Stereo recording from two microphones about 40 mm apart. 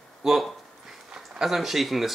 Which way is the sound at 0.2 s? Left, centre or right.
Centre.